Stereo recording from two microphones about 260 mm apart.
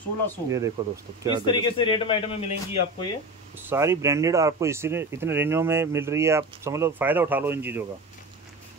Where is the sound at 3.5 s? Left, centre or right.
Centre.